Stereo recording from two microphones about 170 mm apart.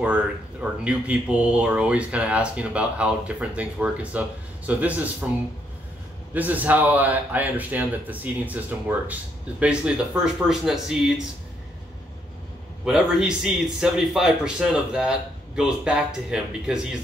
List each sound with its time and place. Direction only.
0.0 s speech: 5° right (ahead or behind)
6.3 s a man's voice: 10° right (ahead or behind)
12.8 s a man's voice: 5° right (ahead or behind)